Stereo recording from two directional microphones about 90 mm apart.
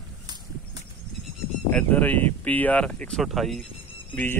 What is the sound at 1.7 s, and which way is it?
Speech, 15° left (ahead or behind).